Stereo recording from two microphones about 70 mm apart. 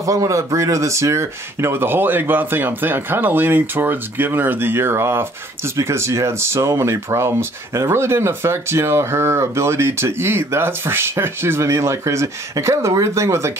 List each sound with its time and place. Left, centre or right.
0.0 s speech: right